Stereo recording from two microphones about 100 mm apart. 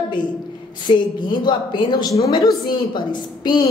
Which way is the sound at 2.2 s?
35° left (ahead or behind).